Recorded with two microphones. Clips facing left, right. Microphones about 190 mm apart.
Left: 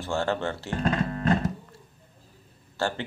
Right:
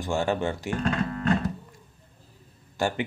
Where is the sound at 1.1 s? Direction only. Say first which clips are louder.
Left 1 dB; 30° left (ahead or behind).